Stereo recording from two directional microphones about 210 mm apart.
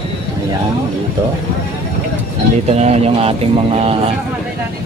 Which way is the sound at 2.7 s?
30° right (ahead or behind).